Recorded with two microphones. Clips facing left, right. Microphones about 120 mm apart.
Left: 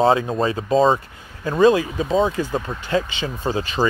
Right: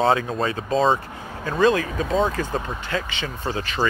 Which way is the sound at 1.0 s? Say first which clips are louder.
Right 8 dB; 55° right (ahead or behind).